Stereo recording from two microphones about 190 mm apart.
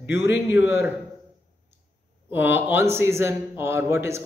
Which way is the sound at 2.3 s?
10° right (ahead or behind).